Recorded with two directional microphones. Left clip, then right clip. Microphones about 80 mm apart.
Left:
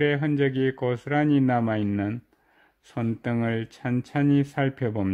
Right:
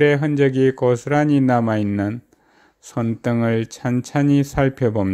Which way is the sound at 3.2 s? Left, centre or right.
Centre.